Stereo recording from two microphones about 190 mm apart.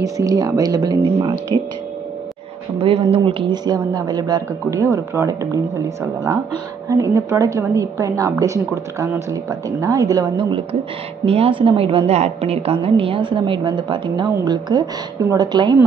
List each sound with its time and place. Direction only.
0.0 s a woman's voice: 15° right (ahead or behind)
2.8 s a woman's voice: 30° right (ahead or behind)